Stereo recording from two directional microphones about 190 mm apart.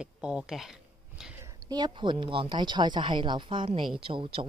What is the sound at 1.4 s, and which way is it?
Speech, 20° right (ahead or behind).